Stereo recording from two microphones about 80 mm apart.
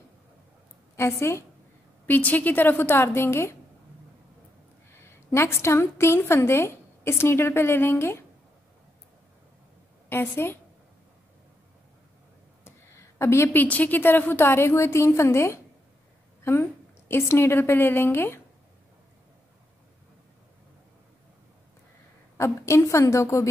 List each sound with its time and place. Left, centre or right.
0.9 s a woman's voice: left
2.0 s a woman's voice: left
5.0 s a woman's voice: left
10.0 s a woman's voice: left
12.6 s a sound: left
13.6 s a woman's voice: centre
22.4 s a woman's voice: left